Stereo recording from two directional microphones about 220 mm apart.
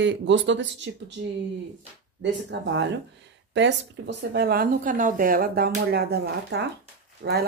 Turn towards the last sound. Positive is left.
turn(degrees=-55)  # may be behind; listen again after turning